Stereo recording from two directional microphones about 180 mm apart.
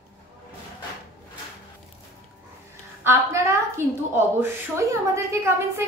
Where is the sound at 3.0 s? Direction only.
15° right (ahead or behind).